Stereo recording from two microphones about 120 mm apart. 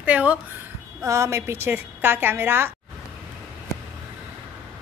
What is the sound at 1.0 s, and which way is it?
A woman's voice, 25° right (ahead or behind).